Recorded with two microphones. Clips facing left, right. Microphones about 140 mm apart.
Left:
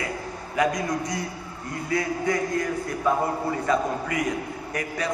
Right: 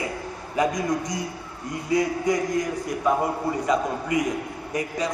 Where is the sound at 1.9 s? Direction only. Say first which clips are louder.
Right 3 dB; 20° right (ahead or behind).